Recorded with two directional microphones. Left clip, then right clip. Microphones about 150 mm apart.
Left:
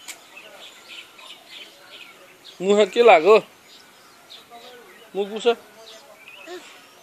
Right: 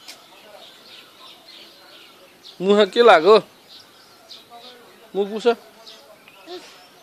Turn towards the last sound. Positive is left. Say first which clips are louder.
# right 2 dB
turn(degrees=-20)  # may be behind; listen again after turning